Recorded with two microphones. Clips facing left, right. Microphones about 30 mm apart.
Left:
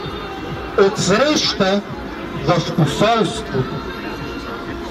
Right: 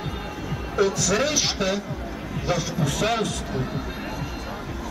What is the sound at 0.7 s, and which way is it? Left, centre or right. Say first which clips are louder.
A man's voice: left 8 dB; left.